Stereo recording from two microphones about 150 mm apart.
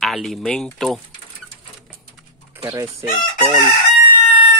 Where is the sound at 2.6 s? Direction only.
20° right (ahead or behind).